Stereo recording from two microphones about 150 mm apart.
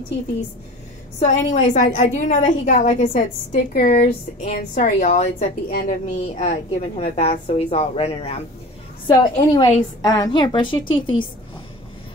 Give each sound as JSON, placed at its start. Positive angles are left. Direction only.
{"t": 1.2, "sound": "a woman's voice", "side_deg": 50}
{"t": 4.6, "sound": "a woman's voice", "side_deg": 65}
{"t": 5.7, "sound": "a woman's voice", "side_deg": 75}
{"t": 6.2, "sound": "a woman's voice", "side_deg": 50}